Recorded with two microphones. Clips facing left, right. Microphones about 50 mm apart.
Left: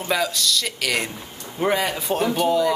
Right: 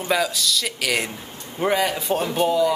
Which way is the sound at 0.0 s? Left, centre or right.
Centre.